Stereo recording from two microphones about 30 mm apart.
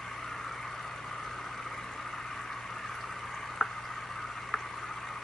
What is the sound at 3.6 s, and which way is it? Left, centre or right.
Drip, centre.